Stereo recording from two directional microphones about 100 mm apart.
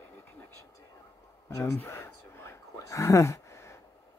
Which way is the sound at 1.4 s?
25° left (ahead or behind).